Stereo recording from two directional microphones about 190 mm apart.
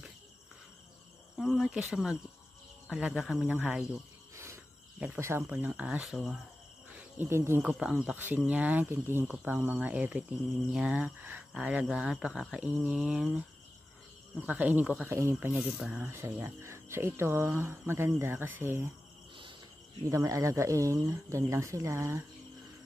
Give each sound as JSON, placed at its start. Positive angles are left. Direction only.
{"t": 1.4, "sound": "speech", "side_deg": -5}
{"t": 7.2, "sound": "speech", "side_deg": -15}
{"t": 14.4, "sound": "speech", "side_deg": -10}
{"t": 20.1, "sound": "speech", "side_deg": -15}